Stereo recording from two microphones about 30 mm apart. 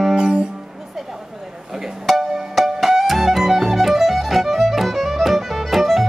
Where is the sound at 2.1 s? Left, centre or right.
Centre.